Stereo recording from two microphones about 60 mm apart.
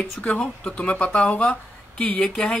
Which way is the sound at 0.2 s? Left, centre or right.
Left.